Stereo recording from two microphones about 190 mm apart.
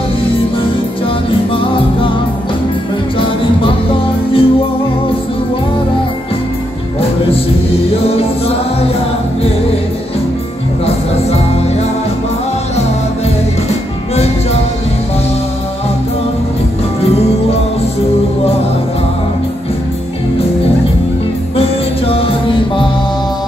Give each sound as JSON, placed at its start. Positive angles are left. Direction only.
{"t": 1.6, "sound": "music", "side_deg": 25}
{"t": 3.2, "sound": "music", "side_deg": 25}
{"t": 8.1, "sound": "music", "side_deg": 30}
{"t": 14.1, "sound": "music", "side_deg": 35}
{"t": 17.0, "sound": "music", "side_deg": 30}
{"t": 21.5, "sound": "music", "side_deg": 30}